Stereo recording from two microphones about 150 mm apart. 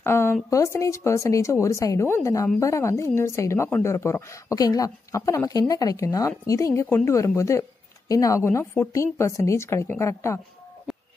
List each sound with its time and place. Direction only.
0.0 s speech: 15° left (ahead or behind)